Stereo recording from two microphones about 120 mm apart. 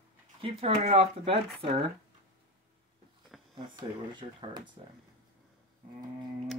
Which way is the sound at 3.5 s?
40° right (ahead or behind).